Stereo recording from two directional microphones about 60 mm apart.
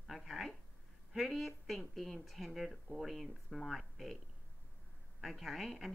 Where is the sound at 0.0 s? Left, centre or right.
Centre.